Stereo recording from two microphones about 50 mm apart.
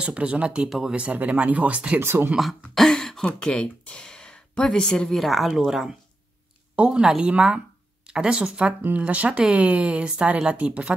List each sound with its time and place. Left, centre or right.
0.0 s speech: right
2.0 s speech: right
2.9 s a sound: centre
3.3 s speech: centre
5.2 s speech: centre
6.7 s speech: right